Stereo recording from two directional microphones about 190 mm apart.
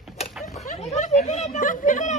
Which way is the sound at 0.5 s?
35° left (ahead or behind).